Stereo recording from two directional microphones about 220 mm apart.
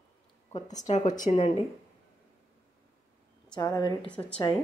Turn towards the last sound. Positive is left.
turn(degrees=5)  # may be behind; listen again after turning